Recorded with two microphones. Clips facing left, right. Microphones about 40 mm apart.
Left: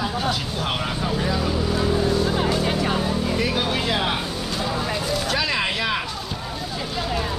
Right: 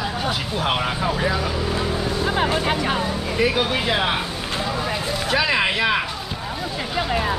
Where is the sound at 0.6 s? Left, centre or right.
Centre.